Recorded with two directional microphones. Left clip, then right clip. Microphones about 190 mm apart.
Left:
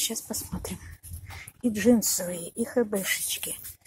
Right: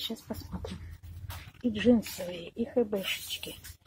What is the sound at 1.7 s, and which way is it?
Speech, 25° left (ahead or behind).